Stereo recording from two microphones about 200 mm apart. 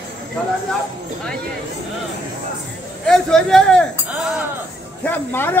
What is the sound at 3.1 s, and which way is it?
Speech, centre (ahead or behind).